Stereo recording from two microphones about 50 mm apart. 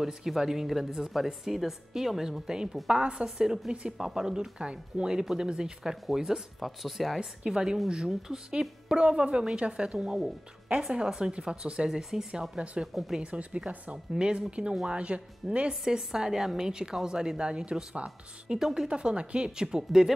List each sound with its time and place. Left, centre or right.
0.0 s a woman's voice: centre
12.9 s speech: centre
13.2 s a woman's voice: right
15.7 s a woman's voice: centre
18.6 s speech: centre
18.9 s a woman's voice: centre